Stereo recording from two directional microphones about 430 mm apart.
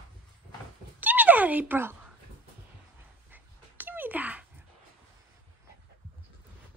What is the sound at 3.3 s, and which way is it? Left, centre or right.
Dog, centre.